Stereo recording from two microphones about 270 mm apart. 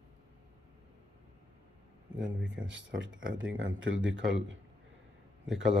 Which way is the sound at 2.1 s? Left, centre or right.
Right.